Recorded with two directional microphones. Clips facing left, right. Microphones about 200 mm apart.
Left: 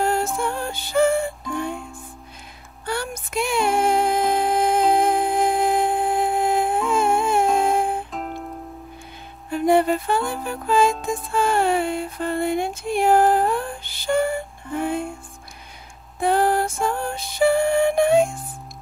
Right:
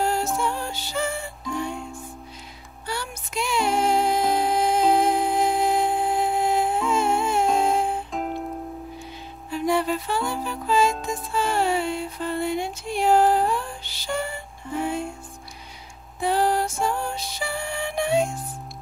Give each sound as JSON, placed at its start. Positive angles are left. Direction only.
{"t": 0.0, "sound": "music", "side_deg": 55}
{"t": 2.9, "sound": "music", "side_deg": 55}
{"t": 6.9, "sound": "humming", "side_deg": 50}
{"t": 7.5, "sound": "music", "side_deg": 55}
{"t": 8.1, "sound": "music", "side_deg": -5}
{"t": 9.5, "sound": "music", "side_deg": 55}
{"t": 16.2, "sound": "music", "side_deg": 55}